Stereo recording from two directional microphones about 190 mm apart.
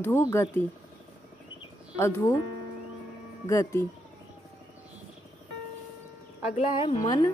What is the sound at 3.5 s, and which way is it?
Speech, 15° left (ahead or behind).